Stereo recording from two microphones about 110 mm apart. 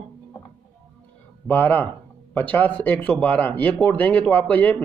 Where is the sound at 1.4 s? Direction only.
15° left (ahead or behind).